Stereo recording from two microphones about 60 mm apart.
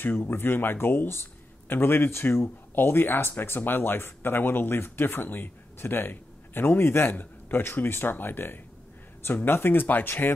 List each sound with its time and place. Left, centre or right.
0.2 s speech: left